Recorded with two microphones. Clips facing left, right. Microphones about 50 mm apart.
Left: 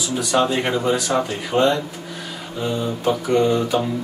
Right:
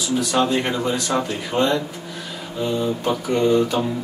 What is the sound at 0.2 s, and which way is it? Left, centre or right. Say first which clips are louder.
Speech: left 2 dB; centre.